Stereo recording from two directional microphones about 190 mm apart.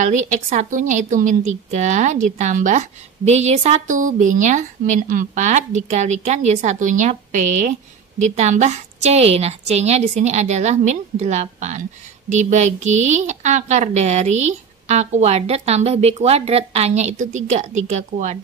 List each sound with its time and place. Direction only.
0.0 s a woman's voice: 40° right (ahead or behind)